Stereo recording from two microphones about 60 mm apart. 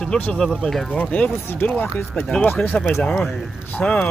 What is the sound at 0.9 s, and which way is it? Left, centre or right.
Speech, left.